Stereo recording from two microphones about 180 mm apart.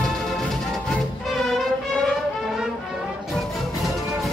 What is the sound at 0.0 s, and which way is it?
Music, centre (ahead or behind).